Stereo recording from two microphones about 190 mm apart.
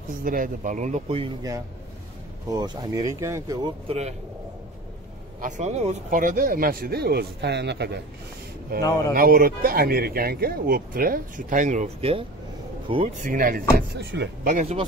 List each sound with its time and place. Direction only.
0.2 s speech: 45° right (ahead or behind)
2.5 s speech: 20° right (ahead or behind)
3.8 s speech: 35° right (ahead or behind)
5.4 s speech: 35° right (ahead or behind); by 8.0 s 65° right (ahead or behind)
8.7 s speech: 50° right (ahead or behind); by 13.1 s 30° right (ahead or behind)
13.2 s speech: 45° right (ahead or behind); by 14.3 s 65° right (ahead or behind)
14.4 s speech: 40° right (ahead or behind)